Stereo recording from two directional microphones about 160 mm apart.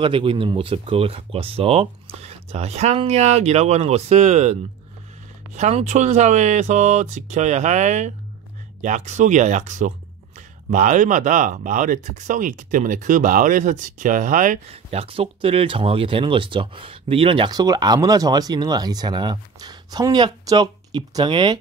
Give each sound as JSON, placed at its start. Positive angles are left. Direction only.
{"t": 0.0, "sound": "speech", "side_deg": -35}
{"t": 14.7, "sound": "speech", "side_deg": -40}